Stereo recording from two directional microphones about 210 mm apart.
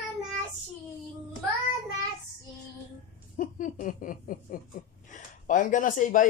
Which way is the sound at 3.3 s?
40° left (ahead or behind).